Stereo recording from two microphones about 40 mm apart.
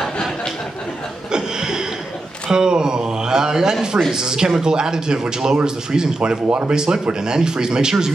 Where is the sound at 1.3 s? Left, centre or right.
Centre.